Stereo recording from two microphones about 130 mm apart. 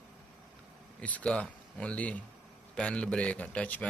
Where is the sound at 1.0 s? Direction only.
10° left (ahead or behind).